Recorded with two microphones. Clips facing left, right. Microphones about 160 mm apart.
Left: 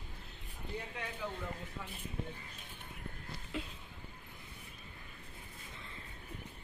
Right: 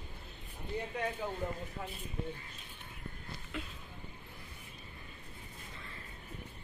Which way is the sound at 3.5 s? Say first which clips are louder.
Left 1 dB; 30° left (ahead or behind).